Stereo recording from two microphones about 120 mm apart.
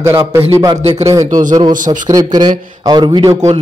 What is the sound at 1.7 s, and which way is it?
Speech, 90° right.